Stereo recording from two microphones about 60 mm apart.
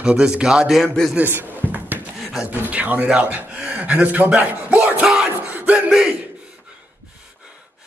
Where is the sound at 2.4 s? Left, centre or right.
Right.